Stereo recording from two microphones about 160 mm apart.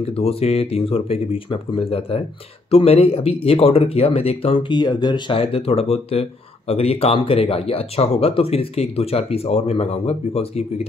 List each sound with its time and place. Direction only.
0.2 s speech: 40° left (ahead or behind)